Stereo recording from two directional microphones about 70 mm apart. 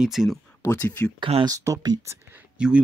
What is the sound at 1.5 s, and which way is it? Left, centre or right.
Speech, right.